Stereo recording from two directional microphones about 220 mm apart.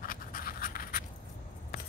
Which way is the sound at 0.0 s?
40° left (ahead or behind).